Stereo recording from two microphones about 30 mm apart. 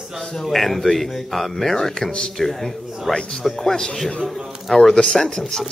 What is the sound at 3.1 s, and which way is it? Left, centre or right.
Speech, left.